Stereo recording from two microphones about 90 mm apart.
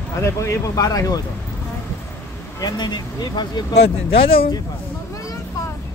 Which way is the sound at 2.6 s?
50° left (ahead or behind).